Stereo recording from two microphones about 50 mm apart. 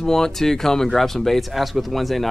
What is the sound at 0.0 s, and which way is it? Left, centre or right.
Speech, centre.